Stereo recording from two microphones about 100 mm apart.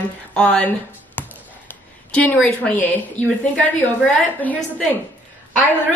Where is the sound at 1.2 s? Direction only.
20° left (ahead or behind).